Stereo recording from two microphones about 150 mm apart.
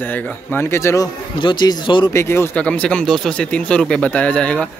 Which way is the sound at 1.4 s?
30° left (ahead or behind).